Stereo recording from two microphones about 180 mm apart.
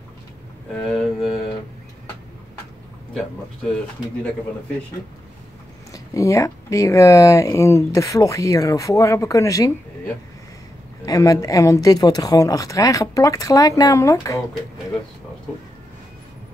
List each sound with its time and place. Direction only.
0.7 s speech: centre (ahead or behind)
5.9 s speech: 15° left (ahead or behind)